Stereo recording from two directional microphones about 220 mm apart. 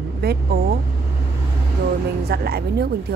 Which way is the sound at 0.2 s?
45° right (ahead or behind).